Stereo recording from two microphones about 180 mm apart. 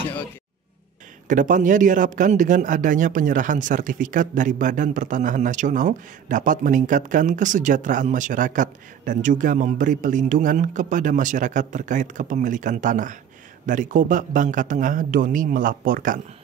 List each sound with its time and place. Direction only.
1.2 s a man's voice: 45° right (ahead or behind)